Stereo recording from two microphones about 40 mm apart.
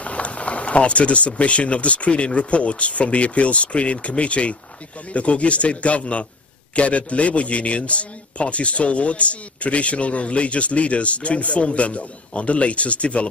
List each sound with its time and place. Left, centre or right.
0.0 s a man's voice: left